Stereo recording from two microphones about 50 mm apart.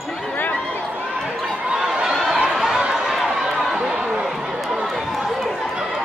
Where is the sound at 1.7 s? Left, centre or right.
Centre.